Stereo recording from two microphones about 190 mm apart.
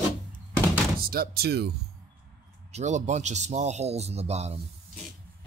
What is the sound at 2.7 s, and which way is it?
Speech, 35° right (ahead or behind).